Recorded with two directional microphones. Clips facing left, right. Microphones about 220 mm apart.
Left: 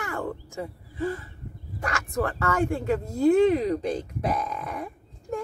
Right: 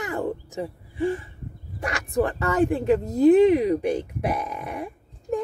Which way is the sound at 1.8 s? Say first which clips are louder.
Right 4 dB; 20° right (ahead or behind).